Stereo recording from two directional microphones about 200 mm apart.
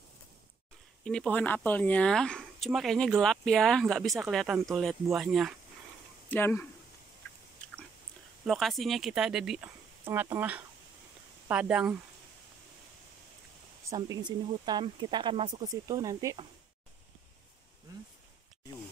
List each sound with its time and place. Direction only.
1.0 s speech: 5° left (ahead or behind)
6.2 s speech: 10° left (ahead or behind)
7.6 s chewing: 5° left (ahead or behind)
8.5 s speech: centre (ahead or behind)
13.8 s speech: 20° right (ahead or behind)